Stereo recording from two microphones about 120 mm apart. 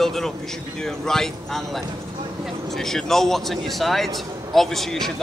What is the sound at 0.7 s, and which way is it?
Speech, 5° left (ahead or behind).